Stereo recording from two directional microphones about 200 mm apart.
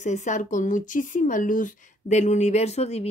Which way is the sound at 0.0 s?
35° left (ahead or behind).